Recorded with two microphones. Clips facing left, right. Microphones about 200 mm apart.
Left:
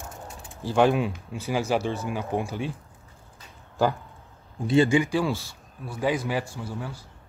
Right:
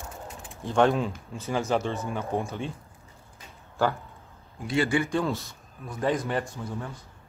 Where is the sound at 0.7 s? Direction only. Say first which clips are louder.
Left 1 dB; 5° left (ahead or behind).